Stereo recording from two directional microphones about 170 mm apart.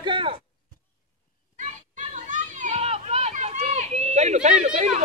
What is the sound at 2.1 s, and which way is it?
Children playing, 45° right (ahead or behind).